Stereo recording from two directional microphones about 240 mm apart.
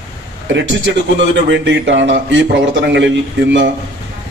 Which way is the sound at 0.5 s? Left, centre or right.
Right.